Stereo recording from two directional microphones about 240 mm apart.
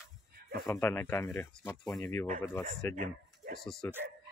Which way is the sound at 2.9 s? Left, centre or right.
Right.